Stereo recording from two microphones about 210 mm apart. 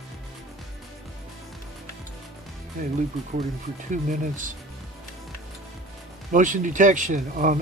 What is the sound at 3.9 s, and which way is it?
Speech, 40° right (ahead or behind).